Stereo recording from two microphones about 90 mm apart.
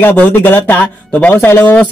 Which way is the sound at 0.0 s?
20° left (ahead or behind).